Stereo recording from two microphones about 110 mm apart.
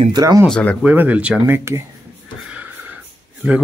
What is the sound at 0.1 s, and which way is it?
Speech, 35° right (ahead or behind).